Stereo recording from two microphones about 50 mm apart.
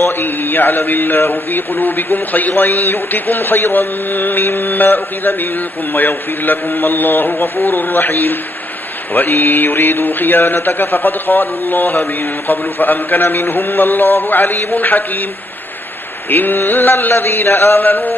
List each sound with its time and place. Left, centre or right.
0.0 s a man's voice: left
16.3 s a man's voice: left
17.1 s a sound: left